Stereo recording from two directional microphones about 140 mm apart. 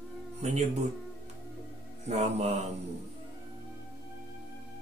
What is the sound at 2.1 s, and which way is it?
Speech, 50° right (ahead or behind).